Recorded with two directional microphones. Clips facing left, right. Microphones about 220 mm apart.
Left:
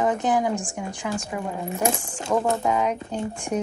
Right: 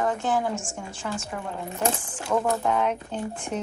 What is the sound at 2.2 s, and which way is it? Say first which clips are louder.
Speech: left 2 dB; 25° left (ahead or behind).